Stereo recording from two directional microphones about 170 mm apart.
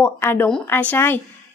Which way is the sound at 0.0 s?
10° left (ahead or behind).